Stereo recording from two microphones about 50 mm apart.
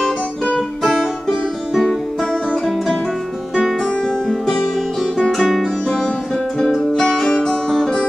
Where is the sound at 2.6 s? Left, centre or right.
Centre.